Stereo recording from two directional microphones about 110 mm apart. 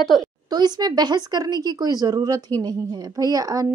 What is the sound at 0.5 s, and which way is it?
Speech, 40° right (ahead or behind).